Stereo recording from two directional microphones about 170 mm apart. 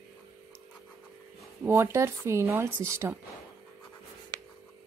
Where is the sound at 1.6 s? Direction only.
15° right (ahead or behind).